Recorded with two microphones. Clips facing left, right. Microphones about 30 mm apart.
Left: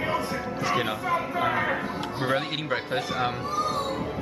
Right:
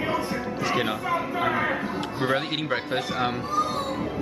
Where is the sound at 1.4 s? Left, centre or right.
Centre.